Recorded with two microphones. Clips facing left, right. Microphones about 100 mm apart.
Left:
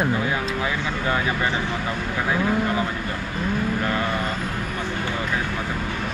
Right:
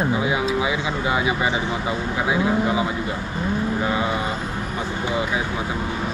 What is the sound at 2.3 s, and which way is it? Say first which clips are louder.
Speech: right 2 dB; 10° right (ahead or behind).